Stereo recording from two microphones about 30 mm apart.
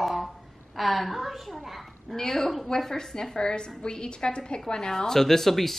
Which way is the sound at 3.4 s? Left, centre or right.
Left.